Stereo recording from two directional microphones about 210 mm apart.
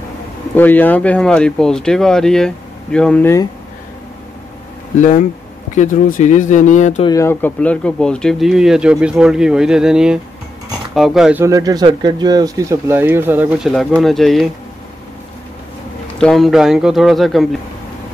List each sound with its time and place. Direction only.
0.6 s speech: 10° left (ahead or behind)
4.9 s speech: 35° left (ahead or behind)
7.1 s speech: 15° left (ahead or behind); by 11.4 s 5° right (ahead or behind)
11.4 s speech: 15° right (ahead or behind); by 14.5 s centre (ahead or behind)
16.2 s speech: centre (ahead or behind)